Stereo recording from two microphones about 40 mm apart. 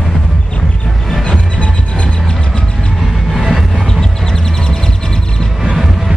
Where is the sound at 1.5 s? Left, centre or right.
Left.